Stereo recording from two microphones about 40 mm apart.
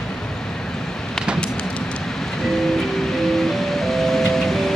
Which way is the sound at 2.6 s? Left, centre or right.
Centre.